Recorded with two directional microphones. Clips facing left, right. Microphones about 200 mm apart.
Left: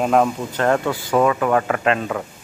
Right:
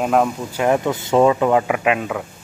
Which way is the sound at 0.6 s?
15° right (ahead or behind).